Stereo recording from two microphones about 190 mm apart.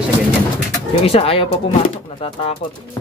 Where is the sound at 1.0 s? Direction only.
30° left (ahead or behind).